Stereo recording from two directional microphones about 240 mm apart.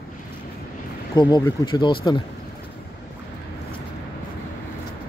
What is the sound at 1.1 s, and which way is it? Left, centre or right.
Speech, centre.